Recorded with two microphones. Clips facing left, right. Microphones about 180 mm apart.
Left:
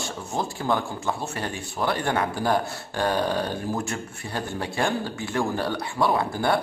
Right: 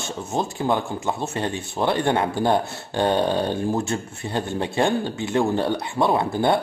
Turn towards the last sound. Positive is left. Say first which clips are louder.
# right 3 dB
turn(degrees=-25)  # may be behind; listen again after turning